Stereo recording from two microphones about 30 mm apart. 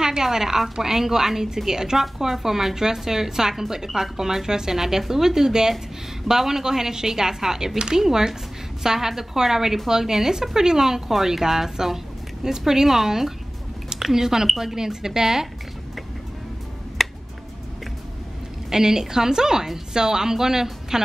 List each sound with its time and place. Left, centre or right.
0.0 s a woman's voice: centre
17.0 s finger snapping: centre
18.7 s a woman's voice: centre